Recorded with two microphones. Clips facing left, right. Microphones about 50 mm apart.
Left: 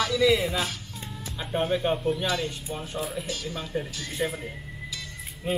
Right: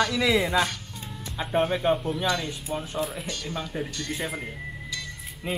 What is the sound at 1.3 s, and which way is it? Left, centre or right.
Speech, centre.